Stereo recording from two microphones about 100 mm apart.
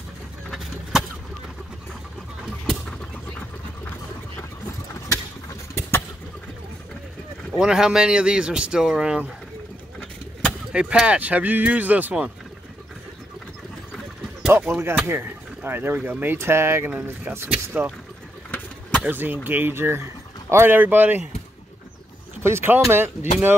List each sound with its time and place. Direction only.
2.4 s a sound: centre (ahead or behind)
5.8 s vehicle: 25° left (ahead or behind)
7.5 s speech: 5° right (ahead or behind)
10.7 s speech: 10° right (ahead or behind)
14.7 s speech: 25° right (ahead or behind)
18.5 s vehicle: 10° left (ahead or behind)
19.0 s speech: 20° right (ahead or behind)
22.4 s speech: 25° right (ahead or behind)